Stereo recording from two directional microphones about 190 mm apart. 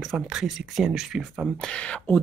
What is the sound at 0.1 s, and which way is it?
Speech, centre (ahead or behind).